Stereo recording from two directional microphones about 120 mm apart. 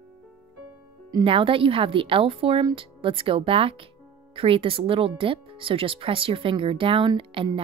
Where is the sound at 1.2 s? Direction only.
50° right (ahead or behind).